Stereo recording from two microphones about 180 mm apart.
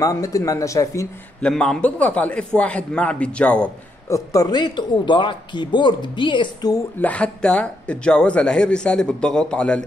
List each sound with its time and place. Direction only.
0.0 s a man's voice: 20° left (ahead or behind)
1.4 s a man's voice: 5° left (ahead or behind)
4.1 s speech: 20° left (ahead or behind)
7.0 s speech: 5° left (ahead or behind)